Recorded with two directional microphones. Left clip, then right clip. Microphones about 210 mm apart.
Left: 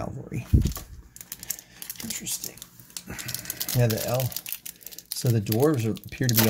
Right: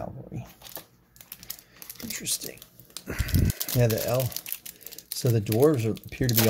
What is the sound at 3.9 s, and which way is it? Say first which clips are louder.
Speech: right 1 dB; 15° right (ahead or behind).